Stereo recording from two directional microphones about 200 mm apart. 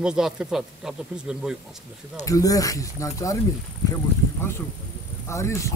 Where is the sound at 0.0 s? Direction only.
5° right (ahead or behind).